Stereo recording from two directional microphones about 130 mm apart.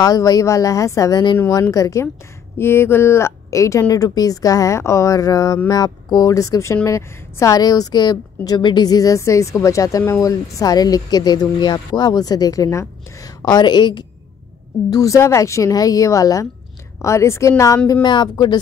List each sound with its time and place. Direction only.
0.0 s a woman's voice: 25° left (ahead or behind)